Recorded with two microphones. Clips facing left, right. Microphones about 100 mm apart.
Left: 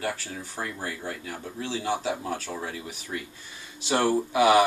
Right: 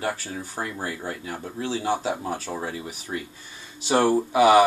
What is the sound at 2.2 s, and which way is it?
Speech, 20° right (ahead or behind).